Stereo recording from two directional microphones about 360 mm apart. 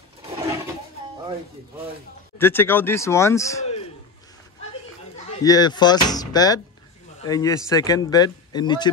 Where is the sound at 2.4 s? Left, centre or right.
Centre.